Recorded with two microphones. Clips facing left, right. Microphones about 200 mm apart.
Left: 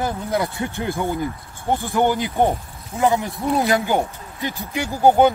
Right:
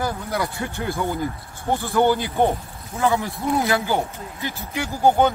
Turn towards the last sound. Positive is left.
turn(degrees=15)  # may be behind; listen again after turning